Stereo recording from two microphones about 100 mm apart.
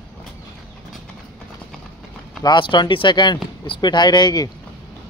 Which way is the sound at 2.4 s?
50° left (ahead or behind).